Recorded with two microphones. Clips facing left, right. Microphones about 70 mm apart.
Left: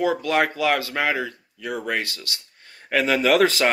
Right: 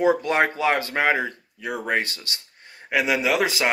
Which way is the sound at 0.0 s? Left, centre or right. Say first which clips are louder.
Right 1 dB; right.